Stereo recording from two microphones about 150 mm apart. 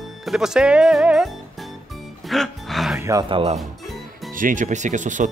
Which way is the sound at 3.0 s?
20° right (ahead or behind).